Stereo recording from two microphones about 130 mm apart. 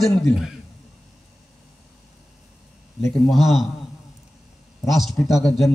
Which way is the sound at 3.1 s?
Centre (ahead or behind).